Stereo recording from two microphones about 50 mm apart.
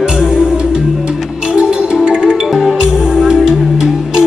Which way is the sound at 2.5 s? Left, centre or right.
Centre.